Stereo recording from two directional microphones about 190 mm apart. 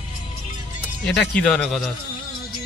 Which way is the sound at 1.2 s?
5° left (ahead or behind).